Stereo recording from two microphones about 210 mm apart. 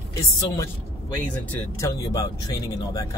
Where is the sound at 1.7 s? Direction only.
15° left (ahead or behind).